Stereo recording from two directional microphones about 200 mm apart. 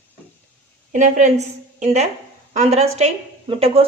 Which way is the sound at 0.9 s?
35° right (ahead or behind).